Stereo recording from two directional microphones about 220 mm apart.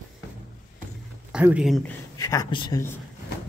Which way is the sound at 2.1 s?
15° left (ahead or behind).